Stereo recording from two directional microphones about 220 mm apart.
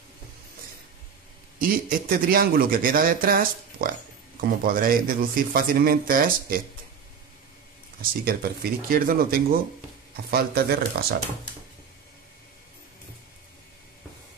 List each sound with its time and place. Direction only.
1.6 s speech: 40° right (ahead or behind)
8.3 s speech: 40° right (ahead or behind)